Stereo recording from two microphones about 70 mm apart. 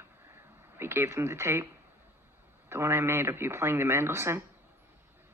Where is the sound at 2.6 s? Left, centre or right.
Right.